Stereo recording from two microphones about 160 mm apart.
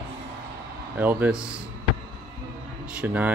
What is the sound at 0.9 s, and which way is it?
Speech, 10° right (ahead or behind).